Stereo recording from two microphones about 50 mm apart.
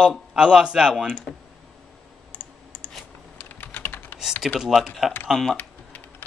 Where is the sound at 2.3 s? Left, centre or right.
Left.